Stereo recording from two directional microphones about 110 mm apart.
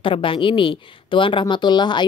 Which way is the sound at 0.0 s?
50° left (ahead or behind).